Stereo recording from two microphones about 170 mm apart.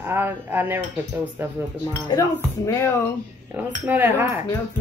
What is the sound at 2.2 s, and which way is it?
Speech, 15° left (ahead or behind).